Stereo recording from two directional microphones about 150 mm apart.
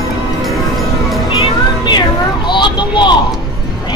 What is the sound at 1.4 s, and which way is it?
Music, 30° left (ahead or behind).